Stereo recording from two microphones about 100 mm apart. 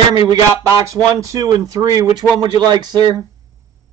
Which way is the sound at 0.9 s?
35° right (ahead or behind).